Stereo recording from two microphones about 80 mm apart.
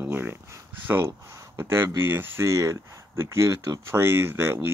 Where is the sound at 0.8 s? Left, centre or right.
Right.